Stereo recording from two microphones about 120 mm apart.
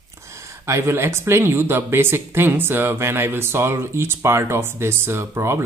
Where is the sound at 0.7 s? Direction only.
20° right (ahead or behind).